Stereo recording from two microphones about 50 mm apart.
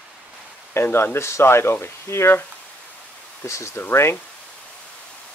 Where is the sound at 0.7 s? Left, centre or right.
Left.